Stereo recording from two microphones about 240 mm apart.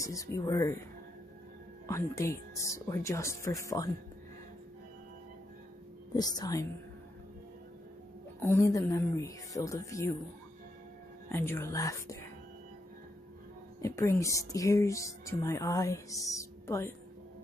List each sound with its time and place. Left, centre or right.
0.0 s speech: centre
1.9 s speech: centre
6.1 s speech: centre
8.4 s speech: centre
11.3 s speech: centre
13.7 s speech: centre